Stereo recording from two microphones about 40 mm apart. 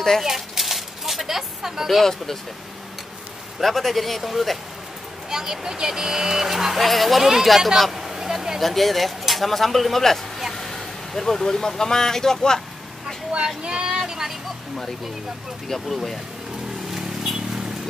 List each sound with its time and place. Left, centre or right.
0.2 s a sound: centre
3.5 s speech: centre
5.3 s speech: centre
8.5 s speech: centre
13.6 s speech: right
13.9 s vehicle: centre
15.7 s speech: centre
16.9 s a sound: centre